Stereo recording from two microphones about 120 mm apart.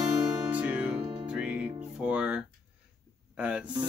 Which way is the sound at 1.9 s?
10° right (ahead or behind).